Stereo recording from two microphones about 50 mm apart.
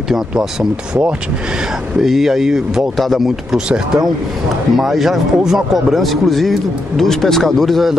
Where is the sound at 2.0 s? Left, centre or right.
Centre.